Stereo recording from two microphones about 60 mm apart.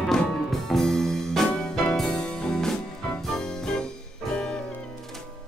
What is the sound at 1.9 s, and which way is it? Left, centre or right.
Music, centre.